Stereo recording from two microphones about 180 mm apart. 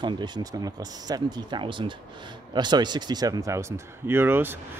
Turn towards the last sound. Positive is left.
turn(degrees=-10)  # may be behind; listen again after turning